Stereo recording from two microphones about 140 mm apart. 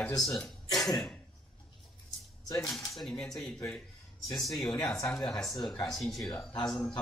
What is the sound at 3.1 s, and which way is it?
Speech, 5° left (ahead or behind).